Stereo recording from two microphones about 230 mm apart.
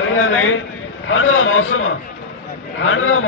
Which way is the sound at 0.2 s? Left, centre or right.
Left.